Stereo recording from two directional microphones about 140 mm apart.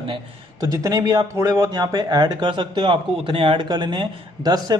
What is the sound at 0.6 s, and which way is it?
Speech, 25° right (ahead or behind).